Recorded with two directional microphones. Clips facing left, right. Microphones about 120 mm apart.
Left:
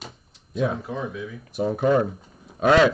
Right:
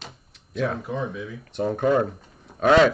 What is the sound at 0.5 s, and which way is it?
Speech, 15° left (ahead or behind).